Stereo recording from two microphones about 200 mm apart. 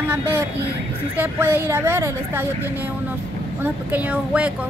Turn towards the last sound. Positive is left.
turn(degrees=-5)  # may be behind; listen again after turning